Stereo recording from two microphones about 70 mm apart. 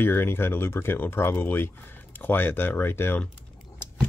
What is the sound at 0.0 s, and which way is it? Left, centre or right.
Speech, left.